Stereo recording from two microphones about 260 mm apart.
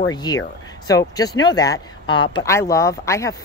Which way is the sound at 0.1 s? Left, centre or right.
Centre.